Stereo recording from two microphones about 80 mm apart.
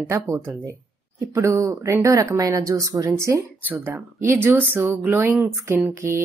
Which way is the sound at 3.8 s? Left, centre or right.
Right.